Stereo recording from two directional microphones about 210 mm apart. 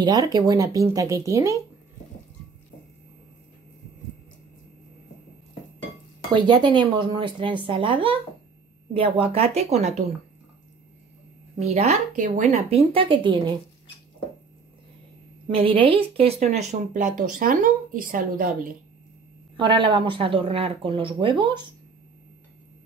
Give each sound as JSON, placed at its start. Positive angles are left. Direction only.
{"t": 0.0, "sound": "speech", "side_deg": -20}
{"t": 6.3, "sound": "speech", "side_deg": -20}
{"t": 11.7, "sound": "speech", "side_deg": -30}
{"t": 15.5, "sound": "speech", "side_deg": -25}
{"t": 19.5, "sound": "speech", "side_deg": -25}